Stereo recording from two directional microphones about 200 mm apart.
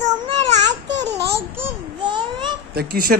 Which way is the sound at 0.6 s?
20° right (ahead or behind).